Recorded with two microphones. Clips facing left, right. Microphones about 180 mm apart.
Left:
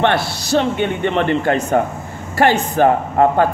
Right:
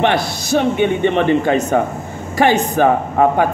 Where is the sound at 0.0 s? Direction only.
15° right (ahead or behind).